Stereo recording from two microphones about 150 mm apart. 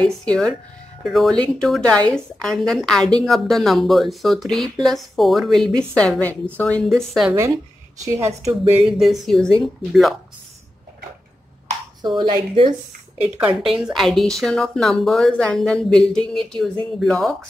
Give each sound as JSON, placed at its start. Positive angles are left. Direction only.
{"t": 0.0, "sound": "a woman's voice", "side_deg": 5}
{"t": 8.0, "sound": "a woman's voice", "side_deg": -20}
{"t": 8.9, "sound": "a woman's voice", "side_deg": 0}
{"t": 12.2, "sound": "speech", "side_deg": -30}
{"t": 13.2, "sound": "a woman's voice", "side_deg": -10}